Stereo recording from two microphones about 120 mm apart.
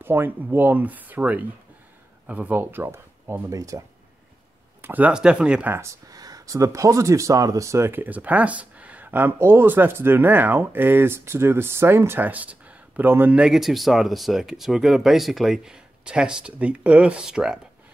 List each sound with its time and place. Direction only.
0.0 s speech: 20° right (ahead or behind)
4.8 s speech: 15° right (ahead or behind)
5.8 s speech: 25° right (ahead or behind); by 17.6 s 5° right (ahead or behind)